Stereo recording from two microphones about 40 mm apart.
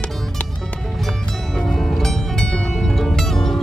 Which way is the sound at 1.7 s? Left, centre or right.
Centre.